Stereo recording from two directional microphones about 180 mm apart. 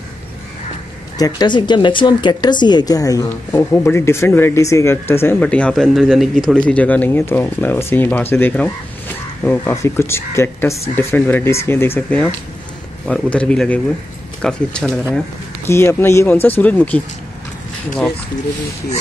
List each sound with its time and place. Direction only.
1.1 s speech: 20° left (ahead or behind); by 15.0 s 5° left (ahead or behind)
15.6 s speech: 15° left (ahead or behind)